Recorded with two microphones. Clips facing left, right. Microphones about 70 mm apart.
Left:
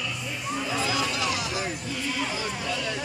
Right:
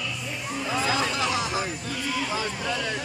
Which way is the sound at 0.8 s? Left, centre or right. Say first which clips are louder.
Right 3 dB; right.